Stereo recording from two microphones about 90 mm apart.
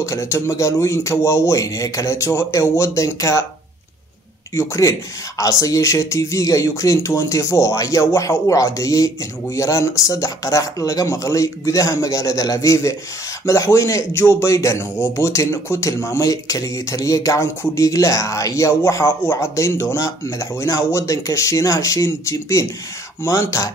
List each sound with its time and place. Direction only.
0.0 s a man's voice: 35° left (ahead or behind)
4.6 s a man's voice: 35° left (ahead or behind)